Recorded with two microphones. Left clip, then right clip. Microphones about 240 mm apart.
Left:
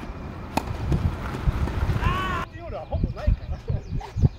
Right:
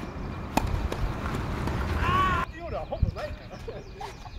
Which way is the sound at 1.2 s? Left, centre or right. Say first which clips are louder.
Even; left.